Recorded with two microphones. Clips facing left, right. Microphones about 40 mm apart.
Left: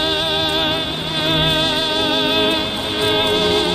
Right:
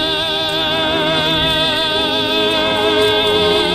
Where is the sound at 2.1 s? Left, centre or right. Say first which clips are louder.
Right 1 dB; centre.